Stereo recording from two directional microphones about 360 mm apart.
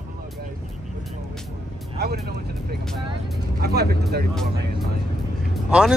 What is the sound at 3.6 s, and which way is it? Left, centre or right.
Speech, right.